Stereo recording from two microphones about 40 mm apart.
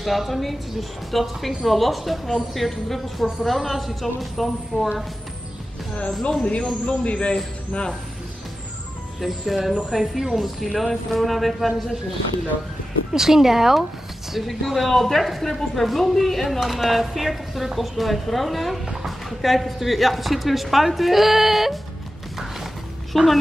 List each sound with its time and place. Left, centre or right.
0.0 s a woman's voice: centre
6.4 s a man's voice: left
9.2 s a woman's voice: centre
13.1 s a woman's voice: centre
23.1 s a woman's voice: centre